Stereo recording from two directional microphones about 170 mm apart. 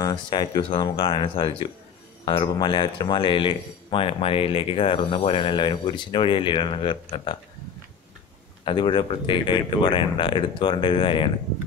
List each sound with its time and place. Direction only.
0.0 s speech: 25° left (ahead or behind)
8.6 s speech: 30° left (ahead or behind)